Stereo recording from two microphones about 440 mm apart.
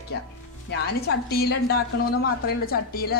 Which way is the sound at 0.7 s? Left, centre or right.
Left.